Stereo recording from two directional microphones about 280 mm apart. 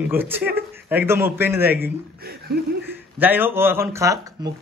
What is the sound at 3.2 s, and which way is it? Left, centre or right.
A man's voice, centre.